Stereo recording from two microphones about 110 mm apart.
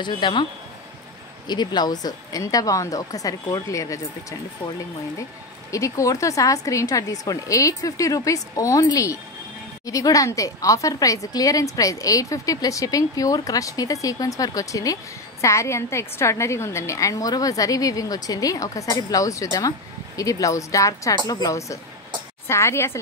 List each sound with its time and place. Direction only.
0.0 s speech: 45° left (ahead or behind)
1.5 s a woman's voice: 40° left (ahead or behind)
5.7 s a woman's voice: 30° left (ahead or behind)